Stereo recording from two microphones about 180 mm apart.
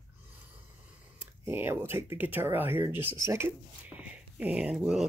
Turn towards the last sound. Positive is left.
turn(degrees=-5)  # may be behind; listen again after turning